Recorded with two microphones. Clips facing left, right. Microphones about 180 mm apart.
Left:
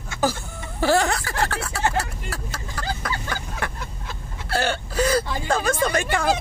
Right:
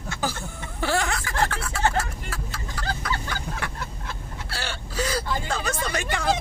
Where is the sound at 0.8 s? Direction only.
35° left (ahead or behind).